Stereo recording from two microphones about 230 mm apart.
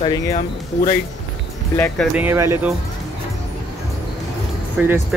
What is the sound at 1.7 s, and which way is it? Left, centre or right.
Speech, centre.